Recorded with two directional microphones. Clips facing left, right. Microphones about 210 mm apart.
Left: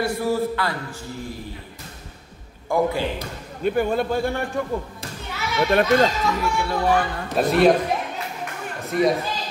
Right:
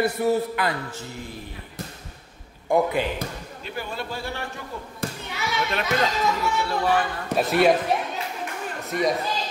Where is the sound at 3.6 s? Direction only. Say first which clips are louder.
Left 12 dB; 50° left (ahead or behind).